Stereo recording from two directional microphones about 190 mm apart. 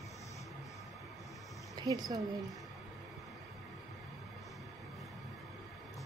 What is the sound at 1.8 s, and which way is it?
Speech, 20° right (ahead or behind).